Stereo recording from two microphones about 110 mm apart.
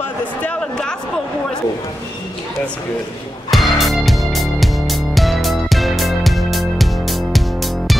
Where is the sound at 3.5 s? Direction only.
Centre (ahead or behind).